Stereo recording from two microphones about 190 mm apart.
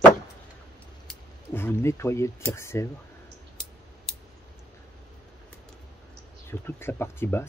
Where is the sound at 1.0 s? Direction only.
10° left (ahead or behind).